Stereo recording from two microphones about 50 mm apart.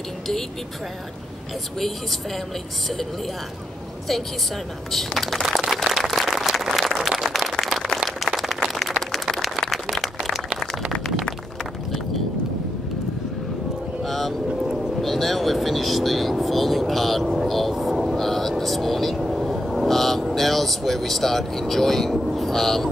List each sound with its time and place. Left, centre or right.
4.9 s speech: centre
5.4 s a sound: centre
8.0 s applause: centre
9.1 s a sound: centre
14.0 s vehicle: centre
14.5 s boat: centre
15.0 s speech: centre
17.5 s vehicle: centre